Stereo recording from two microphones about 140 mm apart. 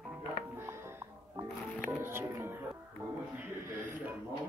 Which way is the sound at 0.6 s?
20° right (ahead or behind).